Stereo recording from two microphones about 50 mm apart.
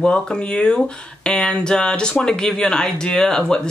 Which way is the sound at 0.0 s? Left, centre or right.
Centre.